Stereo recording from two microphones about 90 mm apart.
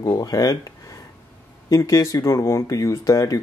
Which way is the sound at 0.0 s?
40° left (ahead or behind).